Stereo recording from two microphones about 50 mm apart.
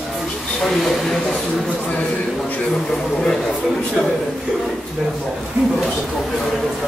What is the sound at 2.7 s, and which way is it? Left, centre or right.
A man's voice, centre.